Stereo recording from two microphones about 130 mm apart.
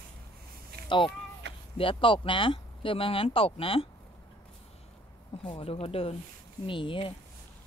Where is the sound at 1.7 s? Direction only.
40° left (ahead or behind).